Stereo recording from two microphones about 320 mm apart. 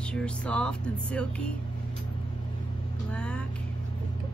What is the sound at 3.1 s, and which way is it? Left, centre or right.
Speech, centre.